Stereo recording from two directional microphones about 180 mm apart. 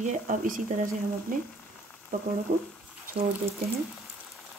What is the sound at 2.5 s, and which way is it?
Speech, 50° right (ahead or behind).